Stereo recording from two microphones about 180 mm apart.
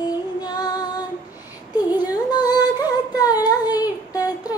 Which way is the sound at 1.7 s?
20° left (ahead or behind).